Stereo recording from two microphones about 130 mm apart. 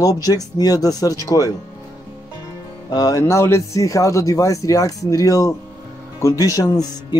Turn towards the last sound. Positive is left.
turn(degrees=30)  # may be behind; listen again after turning